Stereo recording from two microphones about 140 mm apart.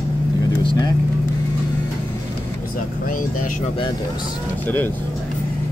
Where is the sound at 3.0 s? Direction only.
70° left (ahead or behind).